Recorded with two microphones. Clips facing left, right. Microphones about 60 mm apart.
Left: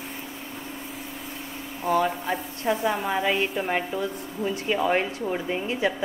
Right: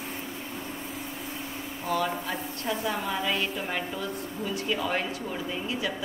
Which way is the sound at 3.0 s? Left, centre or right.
Left.